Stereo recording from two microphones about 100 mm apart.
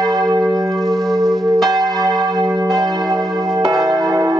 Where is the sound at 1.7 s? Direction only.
40° right (ahead or behind).